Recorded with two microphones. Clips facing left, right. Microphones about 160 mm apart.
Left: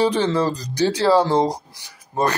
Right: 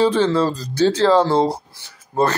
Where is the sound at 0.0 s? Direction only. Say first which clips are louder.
Right 2 dB; 15° left (ahead or behind).